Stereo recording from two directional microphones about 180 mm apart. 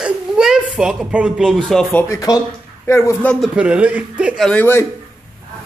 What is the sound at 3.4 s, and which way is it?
Speech, 5° right (ahead or behind).